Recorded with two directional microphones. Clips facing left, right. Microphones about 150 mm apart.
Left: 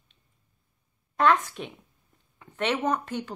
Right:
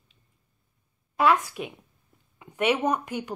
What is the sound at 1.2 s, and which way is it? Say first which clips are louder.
Speech: even; 10° right (ahead or behind).